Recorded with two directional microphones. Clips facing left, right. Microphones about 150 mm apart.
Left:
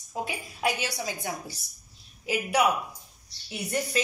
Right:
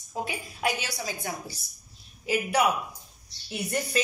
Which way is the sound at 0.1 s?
15° left (ahead or behind).